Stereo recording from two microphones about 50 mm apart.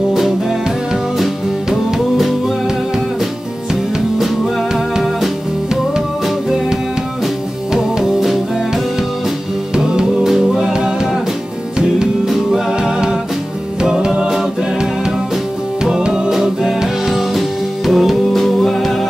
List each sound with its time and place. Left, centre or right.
0.1 s music: centre
7.7 s music: centre
10.2 s music: centre
12.3 s music: centre
12.7 s music: centre